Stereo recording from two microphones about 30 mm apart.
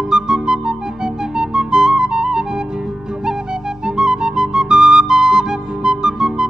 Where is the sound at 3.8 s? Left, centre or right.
Right.